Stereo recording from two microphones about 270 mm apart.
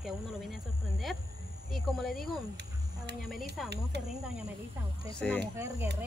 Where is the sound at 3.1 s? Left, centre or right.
Right.